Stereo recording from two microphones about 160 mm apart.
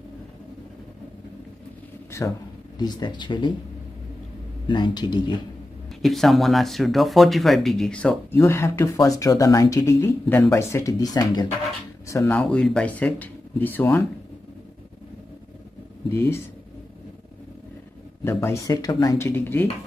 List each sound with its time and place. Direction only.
2.1 s speech: 20° left (ahead or behind)
4.6 s speech: 30° left (ahead or behind)
6.0 s speech: centre (ahead or behind)
16.1 s speech: 15° left (ahead or behind)
18.2 s speech: 15° left (ahead or behind)